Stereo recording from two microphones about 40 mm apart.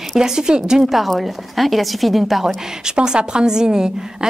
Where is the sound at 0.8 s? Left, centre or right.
Centre.